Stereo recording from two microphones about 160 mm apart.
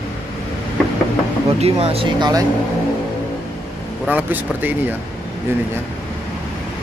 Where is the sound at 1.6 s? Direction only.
40° right (ahead or behind).